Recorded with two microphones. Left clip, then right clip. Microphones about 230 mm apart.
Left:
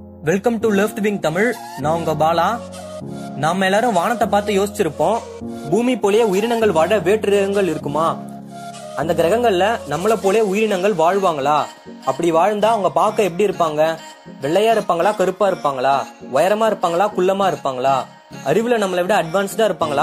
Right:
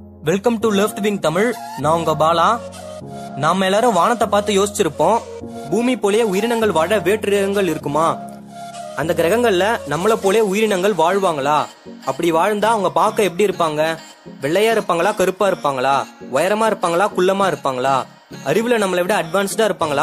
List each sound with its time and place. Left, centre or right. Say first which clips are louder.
0.2 s speech: even; centre